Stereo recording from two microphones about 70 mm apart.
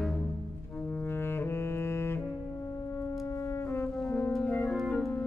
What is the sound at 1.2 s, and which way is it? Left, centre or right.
Music, left.